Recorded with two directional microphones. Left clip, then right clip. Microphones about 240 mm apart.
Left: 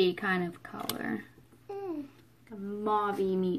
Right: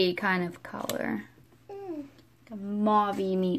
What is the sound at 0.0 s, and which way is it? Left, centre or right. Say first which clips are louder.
Speech: right 2 dB; centre.